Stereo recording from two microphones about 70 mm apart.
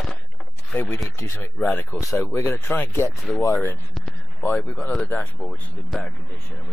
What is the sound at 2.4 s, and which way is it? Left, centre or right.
Speech, left.